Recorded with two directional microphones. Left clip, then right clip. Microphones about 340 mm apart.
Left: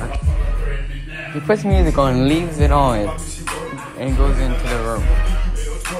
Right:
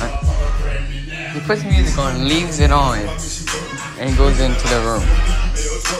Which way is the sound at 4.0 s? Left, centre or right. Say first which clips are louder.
Right 5 dB; centre.